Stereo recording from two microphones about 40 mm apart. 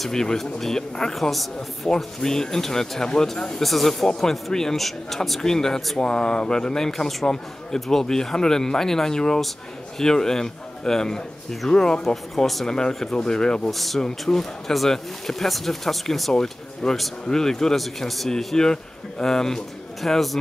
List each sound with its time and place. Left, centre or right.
0.0 s speech: centre
3.6 s speech: centre
5.4 s speech: centre
13.7 s speech: centre
17.7 s speech: centre
18.6 s speech: centre